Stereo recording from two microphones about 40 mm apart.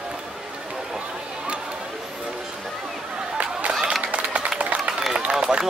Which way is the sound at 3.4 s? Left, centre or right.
Right.